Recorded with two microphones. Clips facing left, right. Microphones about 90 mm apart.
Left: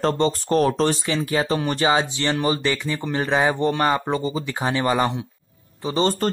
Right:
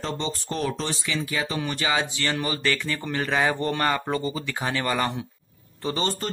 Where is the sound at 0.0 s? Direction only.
45° left (ahead or behind); by 4.9 s 20° left (ahead or behind).